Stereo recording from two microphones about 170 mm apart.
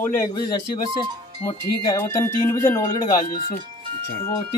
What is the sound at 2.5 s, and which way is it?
Speech, 15° left (ahead or behind).